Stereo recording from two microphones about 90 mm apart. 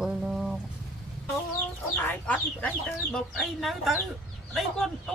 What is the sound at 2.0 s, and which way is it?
Chicken, 20° left (ahead or behind).